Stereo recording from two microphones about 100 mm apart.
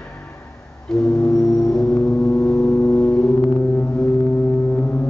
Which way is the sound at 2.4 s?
30° left (ahead or behind).